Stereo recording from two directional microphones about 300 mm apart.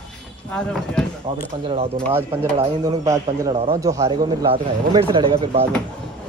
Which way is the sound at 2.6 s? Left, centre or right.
Centre.